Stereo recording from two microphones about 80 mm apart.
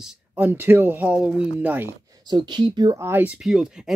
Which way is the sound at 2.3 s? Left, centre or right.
Right.